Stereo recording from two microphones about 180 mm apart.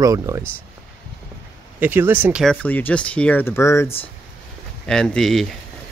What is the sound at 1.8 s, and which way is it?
Speech, 10° right (ahead or behind).